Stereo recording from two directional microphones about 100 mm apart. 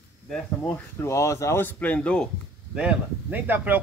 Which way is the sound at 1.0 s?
30° left (ahead or behind).